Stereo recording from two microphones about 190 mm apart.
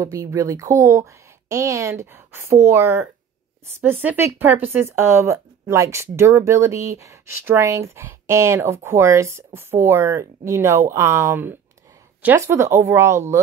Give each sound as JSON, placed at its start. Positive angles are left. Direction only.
{"t": 0.0, "sound": "speech", "side_deg": -15}